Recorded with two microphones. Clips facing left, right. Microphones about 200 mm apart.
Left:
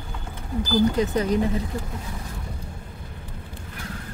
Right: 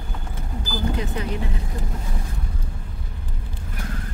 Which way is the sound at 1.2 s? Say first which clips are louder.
Left 5 dB; 40° left (ahead or behind).